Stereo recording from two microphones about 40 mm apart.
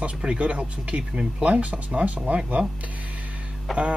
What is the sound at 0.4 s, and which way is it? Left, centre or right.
Speech, right.